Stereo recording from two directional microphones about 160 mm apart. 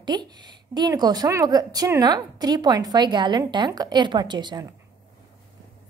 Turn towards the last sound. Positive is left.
turn(degrees=-25)  # may be behind; listen again after turning